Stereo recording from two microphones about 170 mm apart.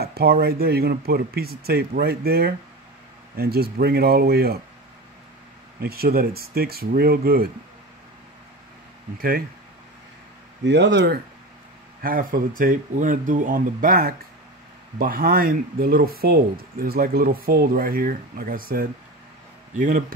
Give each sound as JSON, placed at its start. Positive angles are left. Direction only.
{"t": 0.0, "sound": "speech", "side_deg": -65}
{"t": 5.8, "sound": "speech", "side_deg": -65}
{"t": 10.6, "sound": "speech", "side_deg": -90}
{"t": 12.0, "sound": "speech", "side_deg": -55}